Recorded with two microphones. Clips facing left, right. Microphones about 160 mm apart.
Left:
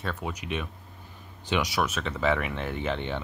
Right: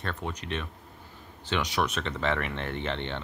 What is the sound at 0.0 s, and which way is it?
Speech, 5° left (ahead or behind).